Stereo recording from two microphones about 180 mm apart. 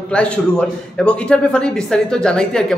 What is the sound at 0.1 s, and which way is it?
A man's voice, 5° left (ahead or behind).